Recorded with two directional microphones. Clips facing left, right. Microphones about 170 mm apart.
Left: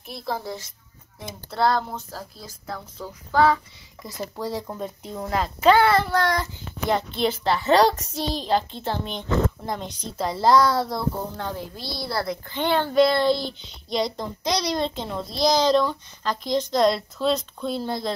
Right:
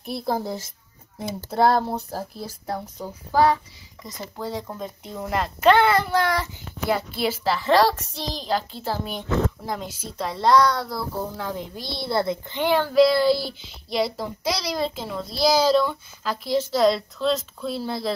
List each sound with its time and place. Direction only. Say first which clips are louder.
0.1 s speech: right 7 dB; centre (ahead or behind)
1.5 s a woman's voice: right 3 dB; 45° right (ahead or behind)
3.0 s a child's voice: right 2 dB; 25° right (ahead or behind)
4.4 s a woman's voice: even; 10° left (ahead or behind)
8.1 s speech: left 4 dB; 35° left (ahead or behind)
8.5 s speech: even; 5° right (ahead or behind)
11.5 s a child's voice: right 1 dB; 15° right (ahead or behind)
12.6 s speech: right 2 dB; 10° right (ahead or behind)